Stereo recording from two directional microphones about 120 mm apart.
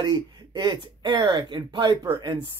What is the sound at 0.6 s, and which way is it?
Speech, 40° right (ahead or behind).